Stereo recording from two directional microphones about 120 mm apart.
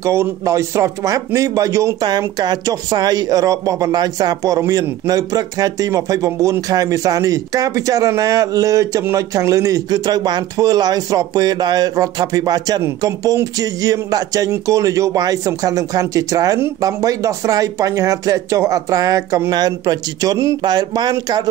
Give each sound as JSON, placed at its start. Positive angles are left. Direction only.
{"t": 0.0, "sound": "speech", "side_deg": -25}
{"t": 2.0, "sound": "a man's voice", "side_deg": -35}